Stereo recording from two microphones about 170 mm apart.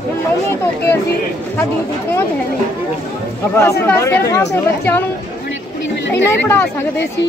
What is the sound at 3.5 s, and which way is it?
Speech, 15° left (ahead or behind).